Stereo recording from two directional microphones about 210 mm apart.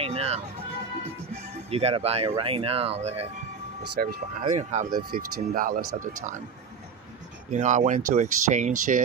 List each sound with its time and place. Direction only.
0.0 s music: 30° right (ahead or behind)
1.7 s speech: 30° right (ahead or behind)
4.0 s speech: 45° right (ahead or behind)
4.6 s speech: 35° right (ahead or behind)
7.5 s speech: 35° right (ahead or behind)